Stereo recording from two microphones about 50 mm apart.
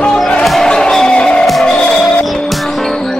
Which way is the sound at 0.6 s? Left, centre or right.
Centre.